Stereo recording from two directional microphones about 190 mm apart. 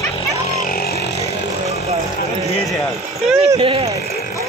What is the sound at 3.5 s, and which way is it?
Speech, 25° right (ahead or behind).